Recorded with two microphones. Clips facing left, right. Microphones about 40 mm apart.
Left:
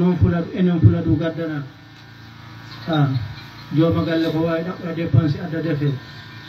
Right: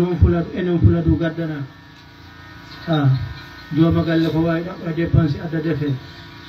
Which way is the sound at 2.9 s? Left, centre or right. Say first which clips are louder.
Right 1 dB; centre.